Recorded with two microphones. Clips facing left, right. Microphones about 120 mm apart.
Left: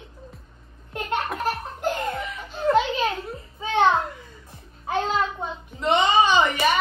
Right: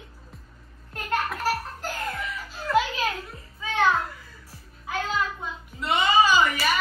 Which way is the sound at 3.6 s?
25° left (ahead or behind).